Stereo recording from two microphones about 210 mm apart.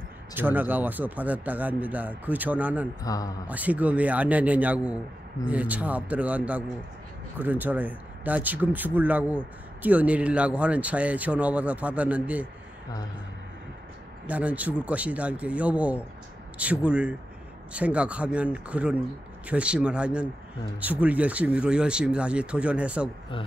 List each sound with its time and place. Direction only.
0.3 s speech: 10° right (ahead or behind)
3.0 s a man's voice: 15° left (ahead or behind)
3.4 s speech: 5° right (ahead or behind)
14.2 s a man's voice: 5° right (ahead or behind)